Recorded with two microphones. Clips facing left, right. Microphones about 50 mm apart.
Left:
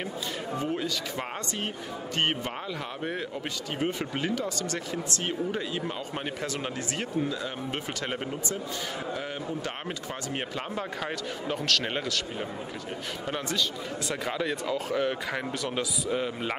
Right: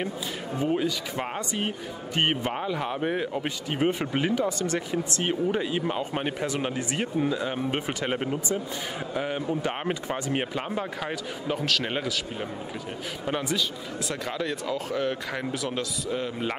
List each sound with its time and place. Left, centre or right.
0.6 s speech: centre
14.0 s speech: centre